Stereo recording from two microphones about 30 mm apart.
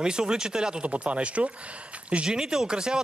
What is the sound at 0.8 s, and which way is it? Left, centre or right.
Speech, right.